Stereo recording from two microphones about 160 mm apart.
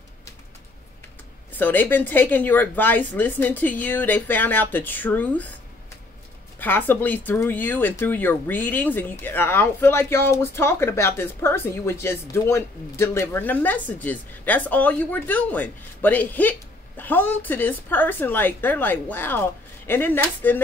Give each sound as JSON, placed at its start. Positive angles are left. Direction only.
{"t": 1.6, "sound": "speech", "side_deg": 10}
{"t": 6.6, "sound": "speech", "side_deg": 10}